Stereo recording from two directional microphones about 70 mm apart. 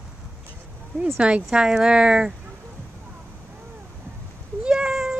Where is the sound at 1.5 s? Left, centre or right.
Centre.